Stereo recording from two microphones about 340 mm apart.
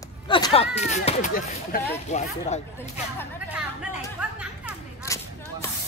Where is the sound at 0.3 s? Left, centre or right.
Centre.